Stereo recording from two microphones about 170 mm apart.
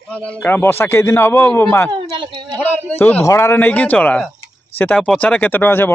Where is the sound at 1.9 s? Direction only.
30° right (ahead or behind).